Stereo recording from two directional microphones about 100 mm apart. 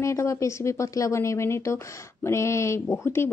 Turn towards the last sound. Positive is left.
turn(degrees=25)  # may be behind; listen again after turning